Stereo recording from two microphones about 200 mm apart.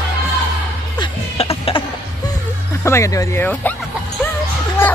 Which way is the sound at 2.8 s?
15° left (ahead or behind).